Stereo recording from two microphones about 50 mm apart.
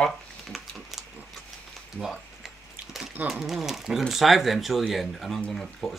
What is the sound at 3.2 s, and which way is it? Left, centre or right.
Speech, centre.